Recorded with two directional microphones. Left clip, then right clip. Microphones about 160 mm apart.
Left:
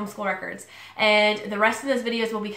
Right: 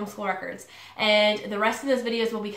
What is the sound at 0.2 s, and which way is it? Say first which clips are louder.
Speech: left 2 dB; centre (ahead or behind).